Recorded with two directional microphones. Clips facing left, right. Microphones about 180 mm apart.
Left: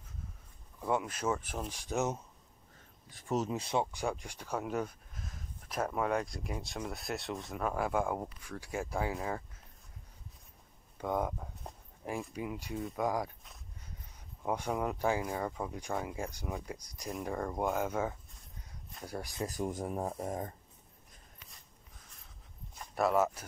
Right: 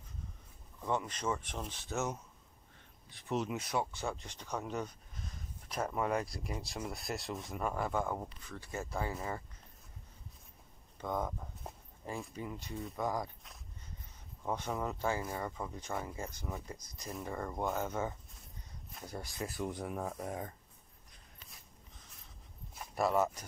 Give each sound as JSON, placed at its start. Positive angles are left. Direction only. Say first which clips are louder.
{"t": 0.7, "sound": "speech", "louder": "left 3 dB", "side_deg": 10}
{"t": 3.1, "sound": "speech", "louder": "left 2 dB", "side_deg": 45}
{"t": 3.4, "sound": "speech", "louder": "left 3 dB", "side_deg": 30}
{"t": 3.9, "sound": "speech", "louder": "left 4 dB", "side_deg": 15}
{"t": 11.0, "sound": "speech", "louder": "left 3 dB", "side_deg": 10}
{"t": 11.6, "sound": "a sound", "louder": "right 2 dB", "side_deg": -5}
{"t": 12.2, "sound": "speech", "louder": "left 4 dB", "side_deg": 10}
{"t": 18.9, "sound": "speech", "louder": "left 3 dB", "side_deg": 0}
{"t": 19.4, "sound": "speech", "louder": "left 3 dB", "side_deg": 45}
{"t": 22.8, "sound": "speech", "louder": "left 2 dB", "side_deg": 0}